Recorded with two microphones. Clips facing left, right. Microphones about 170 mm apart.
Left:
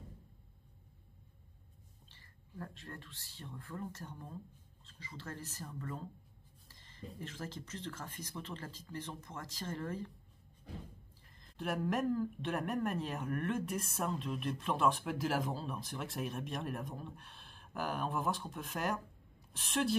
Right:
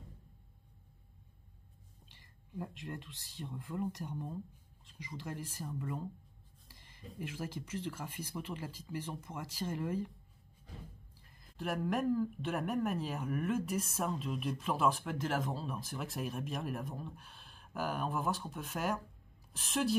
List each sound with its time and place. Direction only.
2.0 s speech: 15° right (ahead or behind)
11.4 s a woman's voice: centre (ahead or behind)